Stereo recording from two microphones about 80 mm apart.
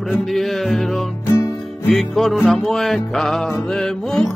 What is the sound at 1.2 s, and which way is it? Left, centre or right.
Music, left.